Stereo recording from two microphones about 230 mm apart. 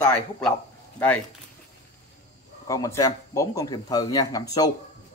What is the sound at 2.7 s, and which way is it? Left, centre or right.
Speech, centre.